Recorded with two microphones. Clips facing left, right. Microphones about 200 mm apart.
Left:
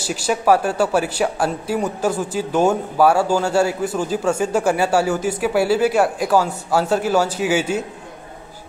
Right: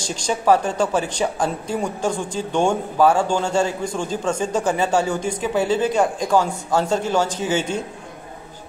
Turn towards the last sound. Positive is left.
turn(degrees=10)  # may be behind; listen again after turning